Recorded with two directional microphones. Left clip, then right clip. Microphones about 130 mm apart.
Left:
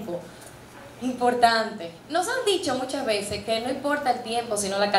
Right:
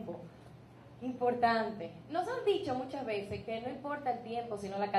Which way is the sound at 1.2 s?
35° left (ahead or behind).